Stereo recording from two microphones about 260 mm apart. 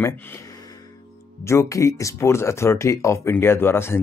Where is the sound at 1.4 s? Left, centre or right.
Centre.